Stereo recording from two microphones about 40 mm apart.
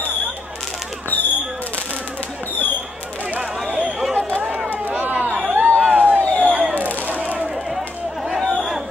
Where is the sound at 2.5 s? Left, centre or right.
Left.